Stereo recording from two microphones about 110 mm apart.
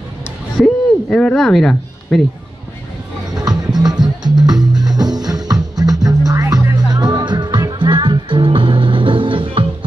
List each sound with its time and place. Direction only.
0.6 s a sound: 5° left (ahead or behind)
3.3 s music: 35° right (ahead or behind)
6.9 s music: 40° right (ahead or behind)